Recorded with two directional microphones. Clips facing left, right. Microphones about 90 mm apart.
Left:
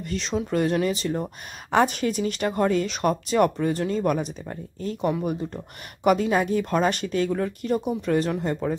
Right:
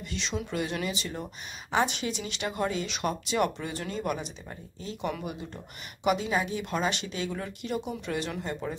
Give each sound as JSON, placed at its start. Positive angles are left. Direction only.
{"t": 0.0, "sound": "speech", "side_deg": 40}
{"t": 1.7, "sound": "speech", "side_deg": 50}